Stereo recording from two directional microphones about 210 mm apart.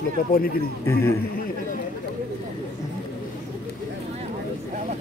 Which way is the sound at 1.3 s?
45° left (ahead or behind).